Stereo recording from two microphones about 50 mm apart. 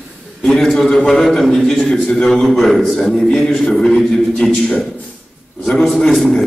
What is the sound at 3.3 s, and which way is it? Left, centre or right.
Music, centre.